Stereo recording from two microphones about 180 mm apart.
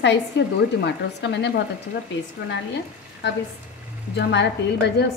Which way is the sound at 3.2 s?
80° left.